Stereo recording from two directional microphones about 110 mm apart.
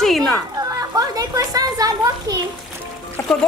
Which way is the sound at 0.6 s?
30° right (ahead or behind).